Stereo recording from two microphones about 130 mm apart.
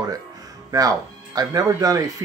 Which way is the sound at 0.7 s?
30° right (ahead or behind).